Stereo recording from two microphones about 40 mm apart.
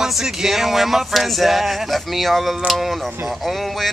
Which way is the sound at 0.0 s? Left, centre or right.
Centre.